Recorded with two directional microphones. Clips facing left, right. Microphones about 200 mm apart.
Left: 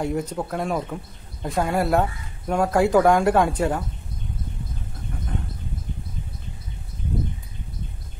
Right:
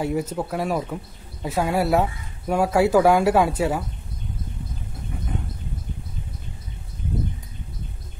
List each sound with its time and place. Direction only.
0.0 s speech: 5° right (ahead or behind)